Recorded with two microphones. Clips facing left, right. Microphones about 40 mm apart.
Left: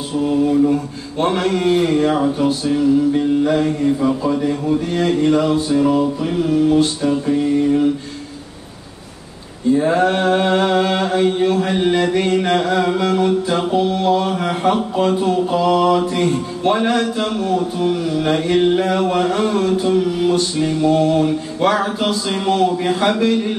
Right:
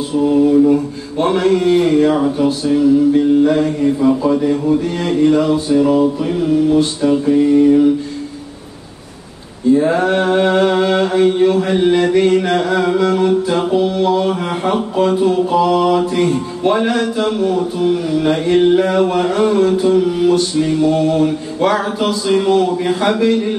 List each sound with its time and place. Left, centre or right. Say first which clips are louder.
0.3 s mantra: right 4 dB; centre
9.8 s mantra: left 1 dB; centre